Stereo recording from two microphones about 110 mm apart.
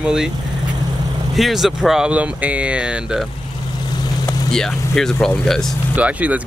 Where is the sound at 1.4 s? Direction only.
Centre (ahead or behind).